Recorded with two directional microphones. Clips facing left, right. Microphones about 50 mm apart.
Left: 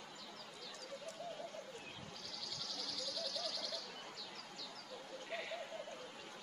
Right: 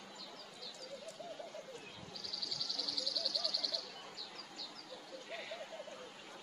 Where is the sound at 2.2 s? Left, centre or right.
Left.